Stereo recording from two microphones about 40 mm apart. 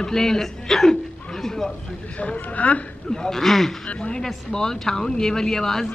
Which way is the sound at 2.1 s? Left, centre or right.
Left.